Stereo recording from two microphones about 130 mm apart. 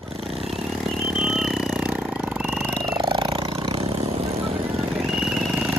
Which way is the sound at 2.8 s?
40° right (ahead or behind).